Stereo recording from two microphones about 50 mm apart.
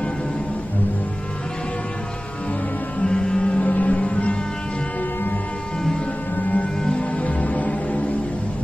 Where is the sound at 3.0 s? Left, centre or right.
Centre.